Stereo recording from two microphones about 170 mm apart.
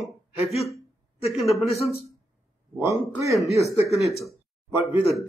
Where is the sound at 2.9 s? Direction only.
15° right (ahead or behind).